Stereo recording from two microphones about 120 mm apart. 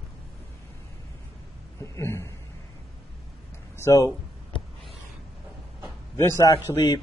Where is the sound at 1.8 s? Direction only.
25° left (ahead or behind).